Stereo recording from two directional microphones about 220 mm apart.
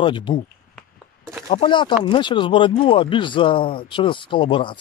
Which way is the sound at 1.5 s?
20° left (ahead or behind).